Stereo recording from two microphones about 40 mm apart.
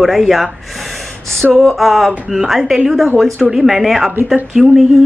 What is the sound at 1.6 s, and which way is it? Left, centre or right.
A woman's voice, centre.